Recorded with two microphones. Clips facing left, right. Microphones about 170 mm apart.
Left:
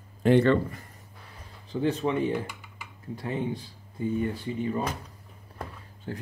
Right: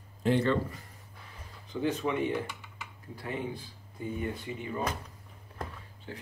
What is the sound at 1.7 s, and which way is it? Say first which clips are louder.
Speech: left 4 dB; 25° left (ahead or behind).